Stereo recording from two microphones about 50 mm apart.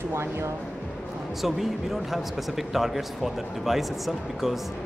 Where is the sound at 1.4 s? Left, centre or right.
Centre.